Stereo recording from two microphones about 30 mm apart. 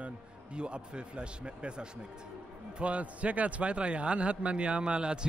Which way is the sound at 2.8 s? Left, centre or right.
Right.